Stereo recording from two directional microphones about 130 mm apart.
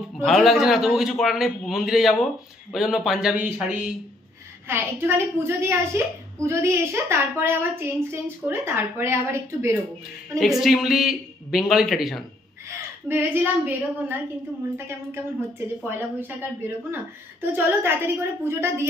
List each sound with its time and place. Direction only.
0.2 s a man's voice: centre (ahead or behind)
4.6 s a woman's voice: 20° right (ahead or behind)
10.4 s a man's voice: centre (ahead or behind)
12.6 s a woman's voice: 15° right (ahead or behind)
15.8 s a woman's voice: 15° right (ahead or behind)